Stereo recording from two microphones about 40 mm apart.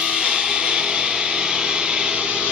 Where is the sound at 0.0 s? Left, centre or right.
Right.